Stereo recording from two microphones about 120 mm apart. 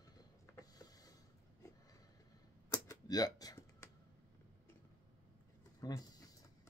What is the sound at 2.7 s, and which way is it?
Typing, 30° left (ahead or behind).